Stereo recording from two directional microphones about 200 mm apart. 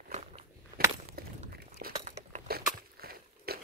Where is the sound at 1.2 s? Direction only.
50° right (ahead or behind).